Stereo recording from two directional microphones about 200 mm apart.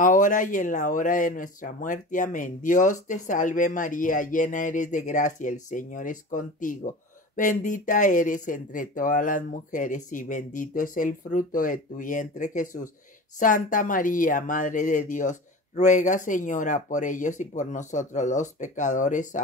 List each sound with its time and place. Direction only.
0.0 s speech: 40° left (ahead or behind)